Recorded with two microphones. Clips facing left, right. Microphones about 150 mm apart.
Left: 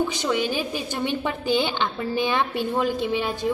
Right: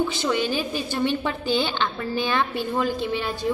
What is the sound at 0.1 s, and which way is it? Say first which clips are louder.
A woman's voice: even; 15° left (ahead or behind).